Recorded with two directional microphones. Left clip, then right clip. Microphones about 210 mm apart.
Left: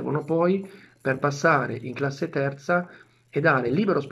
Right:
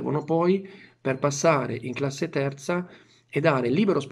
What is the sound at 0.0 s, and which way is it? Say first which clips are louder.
Speech: even; 15° right (ahead or behind).